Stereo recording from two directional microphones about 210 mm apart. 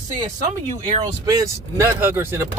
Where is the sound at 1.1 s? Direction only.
20° right (ahead or behind).